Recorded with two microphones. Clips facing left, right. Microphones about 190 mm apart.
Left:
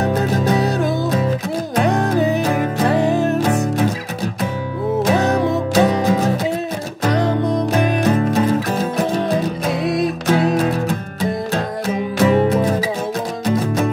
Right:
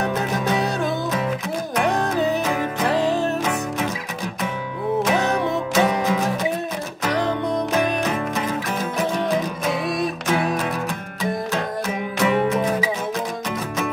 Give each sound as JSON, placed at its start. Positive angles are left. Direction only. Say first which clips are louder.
{"t": 0.0, "sound": "music", "louder": "left 5 dB", "side_deg": 35}
{"t": 2.5, "sound": "music", "louder": "left 4 dB", "side_deg": 40}
{"t": 5.0, "sound": "music", "louder": "left 6 dB", "side_deg": 35}
{"t": 7.2, "sound": "music", "louder": "left 4 dB", "side_deg": 60}
{"t": 7.7, "sound": "music", "louder": "left 6 dB", "side_deg": 35}
{"t": 12.2, "sound": "music", "louder": "left 5 dB", "side_deg": 35}